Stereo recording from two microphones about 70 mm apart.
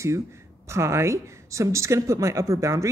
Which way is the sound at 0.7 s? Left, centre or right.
Right.